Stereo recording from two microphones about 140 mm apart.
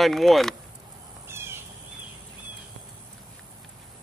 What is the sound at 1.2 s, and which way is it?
Bird, 20° right (ahead or behind).